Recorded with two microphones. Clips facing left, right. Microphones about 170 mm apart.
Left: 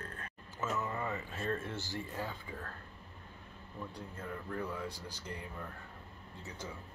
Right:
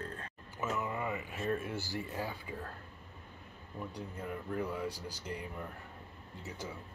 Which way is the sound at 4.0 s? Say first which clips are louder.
Right 4 dB; 15° right (ahead or behind).